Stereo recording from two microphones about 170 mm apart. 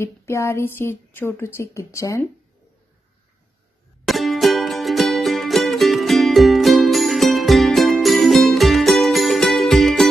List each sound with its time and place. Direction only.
0.0 s a woman's voice: 15° left (ahead or behind)
4.0 s music: centre (ahead or behind)